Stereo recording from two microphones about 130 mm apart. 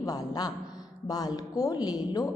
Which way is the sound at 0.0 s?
30° left (ahead or behind).